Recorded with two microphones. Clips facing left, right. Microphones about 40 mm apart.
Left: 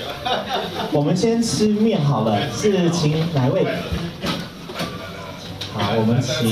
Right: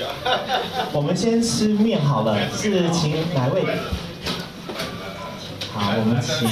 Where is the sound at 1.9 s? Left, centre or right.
Right.